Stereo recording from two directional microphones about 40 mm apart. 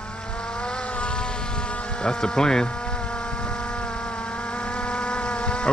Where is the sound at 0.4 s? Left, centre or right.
Left.